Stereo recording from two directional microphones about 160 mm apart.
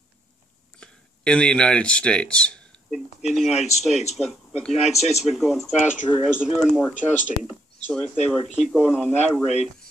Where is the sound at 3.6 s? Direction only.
45° left (ahead or behind).